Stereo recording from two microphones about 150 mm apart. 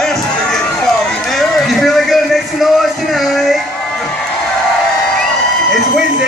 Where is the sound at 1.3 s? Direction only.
Centre (ahead or behind).